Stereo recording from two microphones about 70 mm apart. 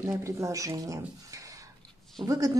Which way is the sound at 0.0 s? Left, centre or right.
Right.